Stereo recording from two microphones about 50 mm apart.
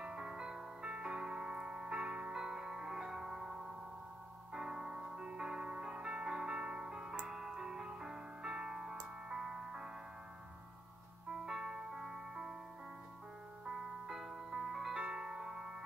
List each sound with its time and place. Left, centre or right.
0.0 s music: centre
11.4 s music: centre
13.7 s music: centre